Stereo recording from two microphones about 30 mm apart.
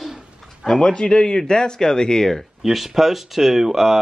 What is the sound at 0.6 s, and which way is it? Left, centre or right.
Speech, centre.